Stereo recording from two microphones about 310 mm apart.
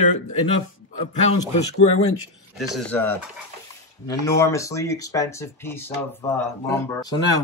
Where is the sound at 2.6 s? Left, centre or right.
Centre.